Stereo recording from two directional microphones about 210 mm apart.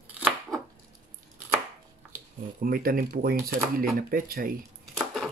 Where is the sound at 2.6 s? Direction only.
45° right (ahead or behind).